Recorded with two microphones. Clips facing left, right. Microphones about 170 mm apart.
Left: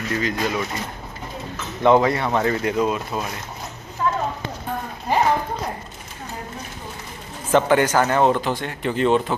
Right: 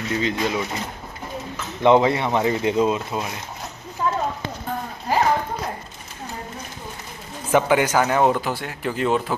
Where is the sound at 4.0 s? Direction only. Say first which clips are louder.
Left 1 dB; 15° right (ahead or behind).